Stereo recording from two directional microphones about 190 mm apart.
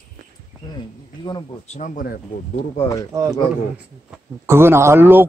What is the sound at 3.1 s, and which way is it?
Speech, 15° right (ahead or behind).